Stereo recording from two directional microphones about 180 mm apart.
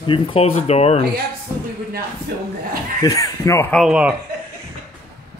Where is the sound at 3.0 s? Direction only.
20° left (ahead or behind).